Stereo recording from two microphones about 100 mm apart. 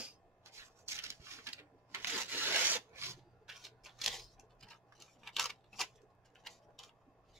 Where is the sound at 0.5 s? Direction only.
25° right (ahead or behind).